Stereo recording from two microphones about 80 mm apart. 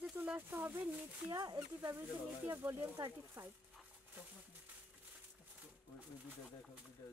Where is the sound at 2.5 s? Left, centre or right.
Right.